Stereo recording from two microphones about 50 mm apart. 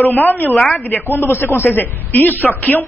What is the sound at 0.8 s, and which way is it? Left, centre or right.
Speech, left.